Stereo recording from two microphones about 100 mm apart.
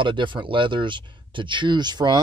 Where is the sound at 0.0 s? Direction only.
55° right (ahead or behind).